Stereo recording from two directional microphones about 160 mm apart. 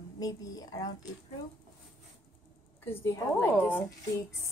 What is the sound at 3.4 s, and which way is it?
Speech, 10° left (ahead or behind).